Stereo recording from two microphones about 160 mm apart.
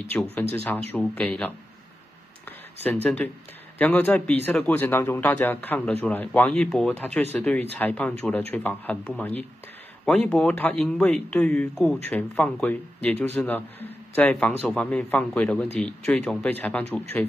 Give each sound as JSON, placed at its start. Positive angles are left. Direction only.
{"t": 0.3, "sound": "speech", "side_deg": 10}
{"t": 2.8, "sound": "speech", "side_deg": 10}